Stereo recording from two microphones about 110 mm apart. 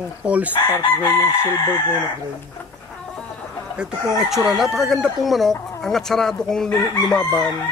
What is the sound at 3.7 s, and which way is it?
Speech, 5° right (ahead or behind).